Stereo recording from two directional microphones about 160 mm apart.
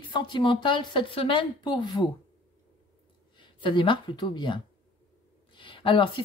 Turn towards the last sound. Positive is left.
turn(degrees=30)  # may be behind; listen again after turning